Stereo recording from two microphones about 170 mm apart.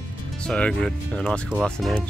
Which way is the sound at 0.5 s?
5° left (ahead or behind).